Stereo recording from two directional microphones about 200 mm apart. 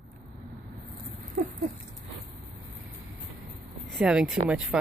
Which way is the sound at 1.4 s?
45° right (ahead or behind).